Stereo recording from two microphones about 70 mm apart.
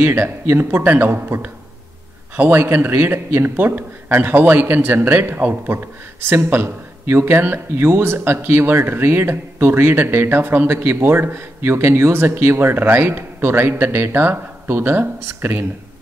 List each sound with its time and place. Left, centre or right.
0.0 s a man's voice: right